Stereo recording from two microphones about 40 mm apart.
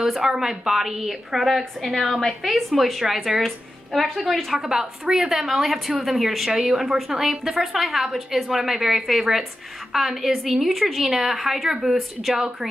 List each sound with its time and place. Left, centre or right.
0.0 s a woman's voice: centre
4.6 s a woman's voice: centre